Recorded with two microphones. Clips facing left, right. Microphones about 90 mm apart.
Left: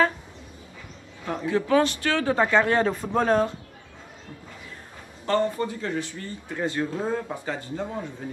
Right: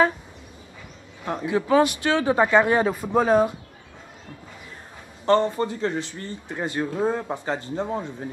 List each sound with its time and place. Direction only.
1.2 s speech: 20° right (ahead or behind)
5.2 s speech: 30° right (ahead or behind)